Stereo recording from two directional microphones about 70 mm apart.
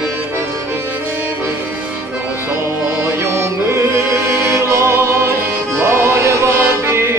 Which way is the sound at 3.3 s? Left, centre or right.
Right.